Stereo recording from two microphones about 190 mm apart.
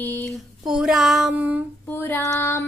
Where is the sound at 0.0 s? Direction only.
10° left (ahead or behind).